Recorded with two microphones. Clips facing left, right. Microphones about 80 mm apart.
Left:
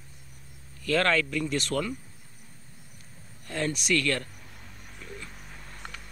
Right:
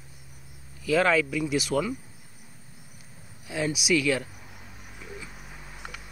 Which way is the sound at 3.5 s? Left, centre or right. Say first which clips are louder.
Right 2 dB; centre.